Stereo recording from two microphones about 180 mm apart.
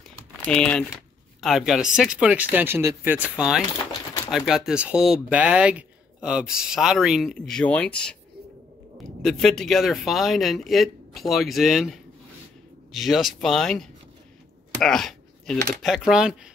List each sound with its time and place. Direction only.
0.5 s speech: 5° left (ahead or behind)
9.2 s speech: centre (ahead or behind)
14.8 s a sound: centre (ahead or behind)
15.8 s speech: centre (ahead or behind)